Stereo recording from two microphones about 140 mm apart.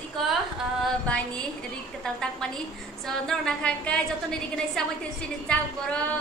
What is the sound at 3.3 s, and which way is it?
A woman's voice, 5° left (ahead or behind).